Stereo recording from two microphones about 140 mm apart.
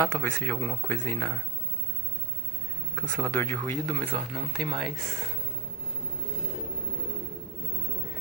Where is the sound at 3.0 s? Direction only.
10° left (ahead or behind).